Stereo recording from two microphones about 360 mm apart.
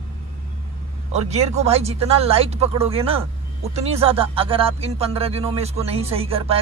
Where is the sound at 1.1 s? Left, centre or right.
Centre.